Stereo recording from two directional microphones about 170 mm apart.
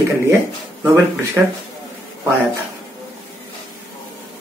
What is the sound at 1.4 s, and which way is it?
Speech, 5° right (ahead or behind).